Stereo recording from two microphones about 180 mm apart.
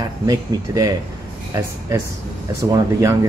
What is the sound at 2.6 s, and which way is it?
Speech, 15° right (ahead or behind).